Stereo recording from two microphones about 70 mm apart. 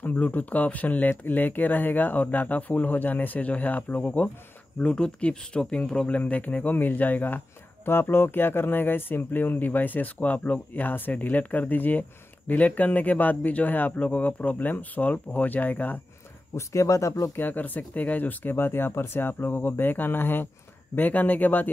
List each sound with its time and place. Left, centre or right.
0.0 s speech: left
16.5 s speech: left
17.4 s speech: left